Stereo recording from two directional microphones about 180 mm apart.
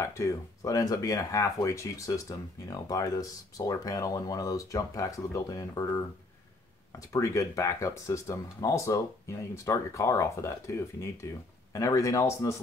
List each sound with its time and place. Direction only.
0.0 s speech: 15° left (ahead or behind)
7.1 s speech: 15° left (ahead or behind)
11.7 s speech: 20° left (ahead or behind)